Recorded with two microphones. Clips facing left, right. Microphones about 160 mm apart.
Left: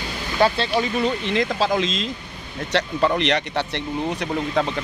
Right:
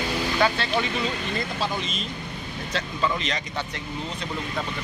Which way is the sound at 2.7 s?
70° left (ahead or behind).